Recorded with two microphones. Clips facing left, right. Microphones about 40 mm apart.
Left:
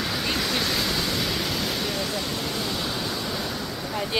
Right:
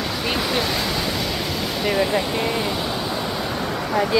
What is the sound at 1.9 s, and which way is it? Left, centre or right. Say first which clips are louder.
Vehicle: right 8 dB; right.